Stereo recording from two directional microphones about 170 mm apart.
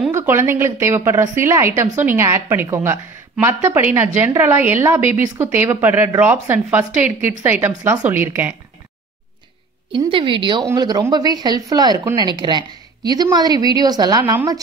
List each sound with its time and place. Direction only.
0.1 s a woman's voice: 15° right (ahead or behind)
9.9 s speech: 30° right (ahead or behind)